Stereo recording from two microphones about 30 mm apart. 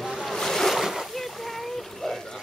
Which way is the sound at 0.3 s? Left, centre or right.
Centre.